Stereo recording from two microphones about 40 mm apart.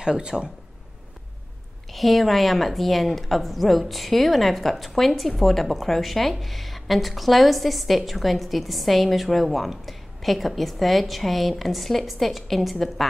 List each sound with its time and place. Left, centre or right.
0.0 s speech: centre
1.9 s a woman's voice: centre